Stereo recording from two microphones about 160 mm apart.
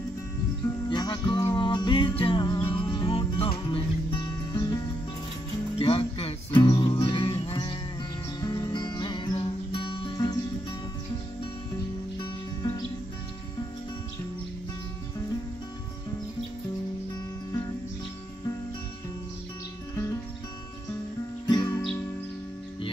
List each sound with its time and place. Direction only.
0.8 s music: 25° left (ahead or behind)
5.8 s music: 35° left (ahead or behind)
21.6 s music: 15° left (ahead or behind)